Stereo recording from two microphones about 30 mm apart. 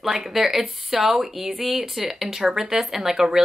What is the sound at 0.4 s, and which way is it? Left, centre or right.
A woman's voice, centre.